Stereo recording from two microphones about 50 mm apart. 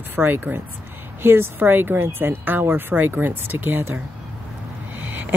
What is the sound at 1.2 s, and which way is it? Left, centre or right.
Speech, right.